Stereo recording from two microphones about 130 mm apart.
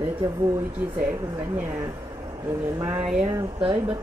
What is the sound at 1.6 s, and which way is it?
Speech, 20° right (ahead or behind).